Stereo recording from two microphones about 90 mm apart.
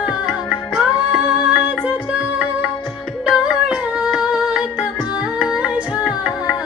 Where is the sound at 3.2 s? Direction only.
10° right (ahead or behind).